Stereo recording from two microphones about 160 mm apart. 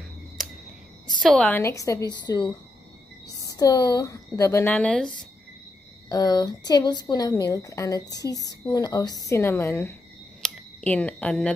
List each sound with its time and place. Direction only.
1.0 s a woman's voice: 5° left (ahead or behind)
1.6 s a woman's voice: 20° left (ahead or behind)
6.0 s a woman's voice: 25° left (ahead or behind)
10.4 s a sound: 10° left (ahead or behind)